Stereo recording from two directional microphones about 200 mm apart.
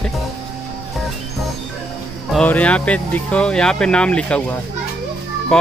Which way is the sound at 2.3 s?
5° left (ahead or behind).